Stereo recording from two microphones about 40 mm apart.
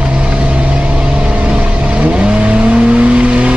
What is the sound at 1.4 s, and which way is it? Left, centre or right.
Vehicle, right.